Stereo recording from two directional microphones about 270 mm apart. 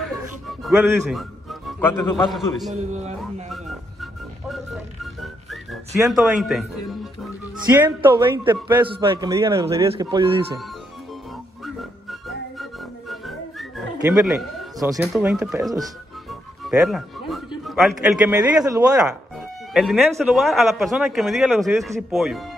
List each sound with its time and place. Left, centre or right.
0.0 s music: centre
2.7 s a man's voice: right
3.5 s music: centre
7.7 s a man's voice: centre
11.6 s music: centre
15.0 s speech: centre
16.3 s music: centre
17.6 s speech: centre